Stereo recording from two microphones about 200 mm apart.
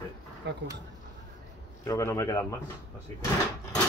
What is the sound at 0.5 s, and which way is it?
Speech, 60° right (ahead or behind).